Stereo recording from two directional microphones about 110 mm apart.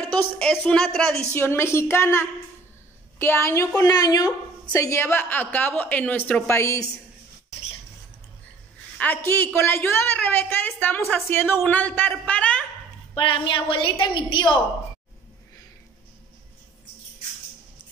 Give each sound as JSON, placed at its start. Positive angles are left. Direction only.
{"t": 0.0, "sound": "a woman's voice", "side_deg": 10}
{"t": 1.3, "sound": "a woman's voice", "side_deg": 20}
{"t": 6.5, "sound": "a woman's voice", "side_deg": 25}
{"t": 8.9, "sound": "a woman's voice", "side_deg": 15}
{"t": 13.1, "sound": "a woman's voice", "side_deg": 55}